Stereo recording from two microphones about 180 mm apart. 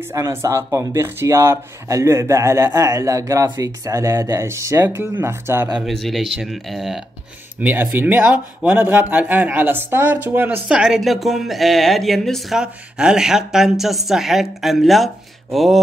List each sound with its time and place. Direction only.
0.1 s speech: 15° right (ahead or behind)
5.9 s speech: centre (ahead or behind)